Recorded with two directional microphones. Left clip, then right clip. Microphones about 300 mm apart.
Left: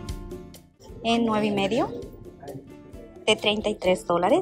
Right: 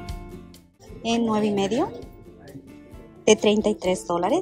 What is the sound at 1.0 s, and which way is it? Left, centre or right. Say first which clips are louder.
Speech: even; centre.